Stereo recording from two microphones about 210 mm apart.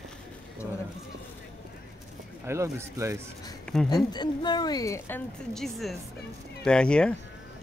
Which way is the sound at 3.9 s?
20° left (ahead or behind).